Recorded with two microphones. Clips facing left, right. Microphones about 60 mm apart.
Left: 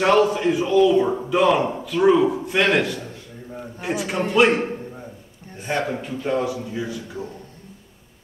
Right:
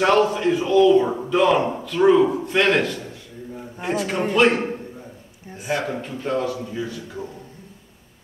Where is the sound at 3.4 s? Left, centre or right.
Centre.